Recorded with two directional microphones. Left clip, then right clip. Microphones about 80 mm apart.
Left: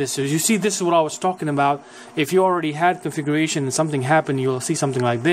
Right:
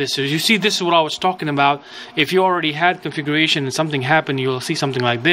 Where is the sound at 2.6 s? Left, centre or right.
Left.